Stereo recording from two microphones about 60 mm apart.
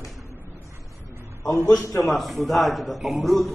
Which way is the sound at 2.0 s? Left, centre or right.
Centre.